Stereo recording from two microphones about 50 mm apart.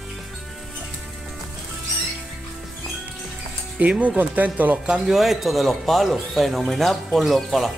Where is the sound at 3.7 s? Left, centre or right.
Right.